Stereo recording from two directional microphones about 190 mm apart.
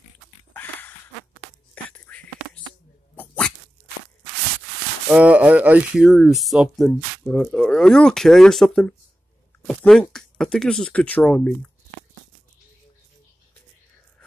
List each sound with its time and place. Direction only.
0.5 s a sound: 10° left (ahead or behind)
1.9 s whispering: 5° left (ahead or behind)
3.2 s dog: 5° left (ahead or behind)
5.1 s speech: 5° right (ahead or behind)